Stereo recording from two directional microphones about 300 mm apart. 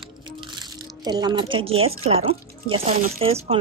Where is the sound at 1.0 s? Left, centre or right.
Centre.